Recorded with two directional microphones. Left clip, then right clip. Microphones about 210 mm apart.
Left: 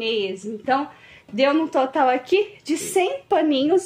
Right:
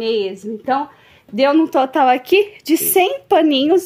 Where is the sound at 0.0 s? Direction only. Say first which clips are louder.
Right 5 dB; 45° right (ahead or behind).